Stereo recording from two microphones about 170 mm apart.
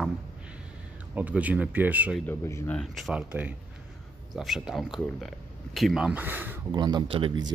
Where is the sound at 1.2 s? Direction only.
10° right (ahead or behind).